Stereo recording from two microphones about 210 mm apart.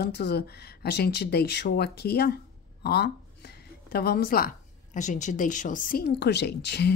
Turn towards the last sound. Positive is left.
turn(degrees=50)  # may be behind; listen again after turning